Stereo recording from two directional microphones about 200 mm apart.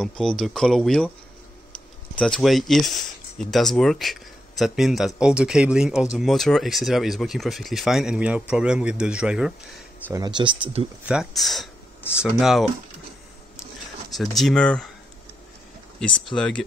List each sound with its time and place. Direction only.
0.0 s speech: 5° left (ahead or behind)
2.1 s speech: 5° left (ahead or behind)
10.1 s speech: 20° right (ahead or behind)
11.1 s speech: centre (ahead or behind)
14.1 s speech: centre (ahead or behind)
16.3 s speech: 5° left (ahead or behind)